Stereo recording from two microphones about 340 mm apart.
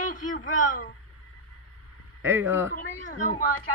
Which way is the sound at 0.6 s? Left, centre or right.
Left.